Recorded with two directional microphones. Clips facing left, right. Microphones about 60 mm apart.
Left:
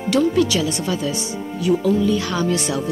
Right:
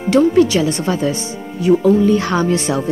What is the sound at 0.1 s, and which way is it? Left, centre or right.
Speech, right.